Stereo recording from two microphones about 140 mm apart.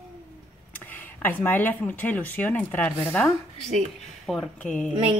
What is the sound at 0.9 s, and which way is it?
Speech, 15° left (ahead or behind).